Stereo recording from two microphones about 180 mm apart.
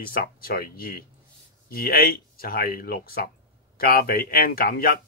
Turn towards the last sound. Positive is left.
turn(degrees=55)  # may be behind; listen again after turning